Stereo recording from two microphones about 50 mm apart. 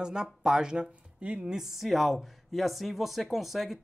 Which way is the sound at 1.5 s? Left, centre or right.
Centre.